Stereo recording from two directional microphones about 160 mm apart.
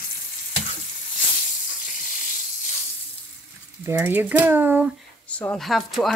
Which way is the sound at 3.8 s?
15° right (ahead or behind).